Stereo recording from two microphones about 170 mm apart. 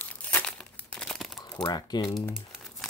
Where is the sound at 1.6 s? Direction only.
25° left (ahead or behind).